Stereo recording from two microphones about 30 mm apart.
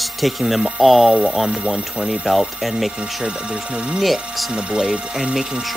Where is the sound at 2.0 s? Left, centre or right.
Right.